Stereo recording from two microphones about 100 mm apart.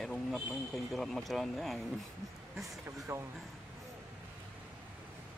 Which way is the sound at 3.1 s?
30° right (ahead or behind).